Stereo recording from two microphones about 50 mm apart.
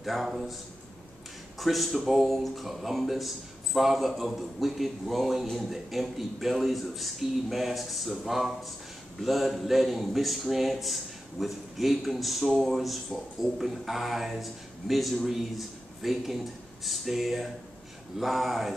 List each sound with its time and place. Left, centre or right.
0.0 s speech: centre
1.6 s speech: centre